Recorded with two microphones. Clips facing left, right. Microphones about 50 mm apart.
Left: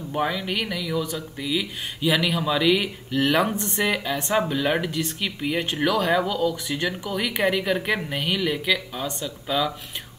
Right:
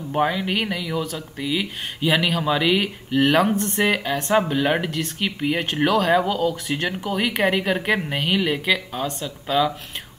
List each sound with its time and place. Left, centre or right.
0.1 s speech: centre
3.5 s speech: centre
3.8 s speech: right
4.2 s speech: centre
4.5 s speech: right
8.9 s speech: centre